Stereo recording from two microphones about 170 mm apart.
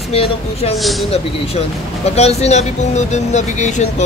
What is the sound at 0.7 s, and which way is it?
Speech, centre (ahead or behind).